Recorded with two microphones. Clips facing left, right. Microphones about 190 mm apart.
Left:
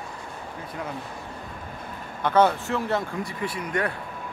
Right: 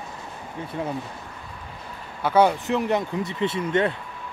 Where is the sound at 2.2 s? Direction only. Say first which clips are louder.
Right 1 dB; 10° right (ahead or behind).